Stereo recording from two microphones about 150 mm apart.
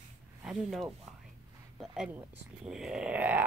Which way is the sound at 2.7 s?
5° right (ahead or behind).